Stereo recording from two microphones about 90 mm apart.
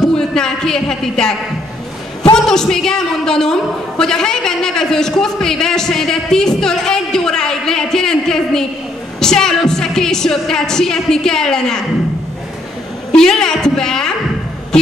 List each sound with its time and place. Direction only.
0.0 s speech: 5° left (ahead or behind)
2.3 s a man's voice: 5° left (ahead or behind)
13.1 s a man's voice: 5° left (ahead or behind)